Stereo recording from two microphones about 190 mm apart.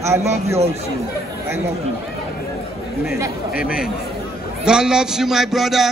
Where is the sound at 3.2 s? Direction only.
10° right (ahead or behind).